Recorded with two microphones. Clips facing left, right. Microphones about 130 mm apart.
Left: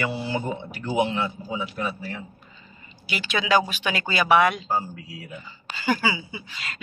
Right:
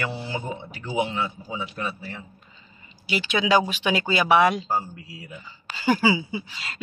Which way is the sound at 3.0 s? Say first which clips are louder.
Right 3 dB; 25° right (ahead or behind).